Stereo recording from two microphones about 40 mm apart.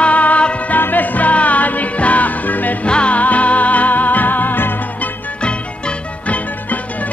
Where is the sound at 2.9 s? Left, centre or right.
Left.